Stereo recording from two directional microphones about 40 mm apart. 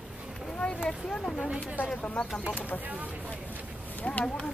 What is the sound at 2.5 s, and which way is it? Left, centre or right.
Speech, left.